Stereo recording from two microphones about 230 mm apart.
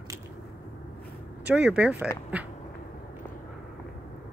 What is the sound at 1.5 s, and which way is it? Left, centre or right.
Speech, centre.